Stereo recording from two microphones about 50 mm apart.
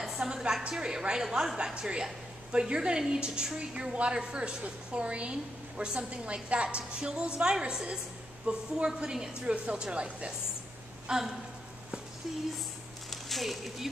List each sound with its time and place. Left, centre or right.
0.0 s a sound: centre
0.7 s a woman's voice: centre
13.1 s speech: centre